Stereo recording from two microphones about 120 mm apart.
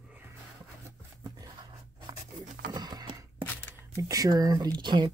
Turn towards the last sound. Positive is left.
turn(degrees=-40)  # may be behind; listen again after turning